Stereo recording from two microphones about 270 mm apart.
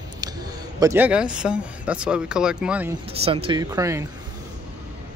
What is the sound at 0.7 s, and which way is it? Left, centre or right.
Speech, centre.